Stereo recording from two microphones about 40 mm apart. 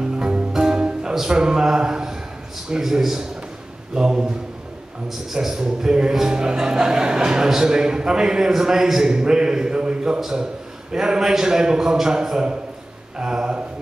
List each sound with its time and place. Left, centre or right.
0.2 s music: right
0.5 s music: centre
1.1 s speech: centre
5.3 s speech: centre